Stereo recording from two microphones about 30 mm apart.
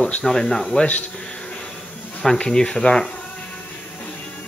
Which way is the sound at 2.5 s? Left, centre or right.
Centre.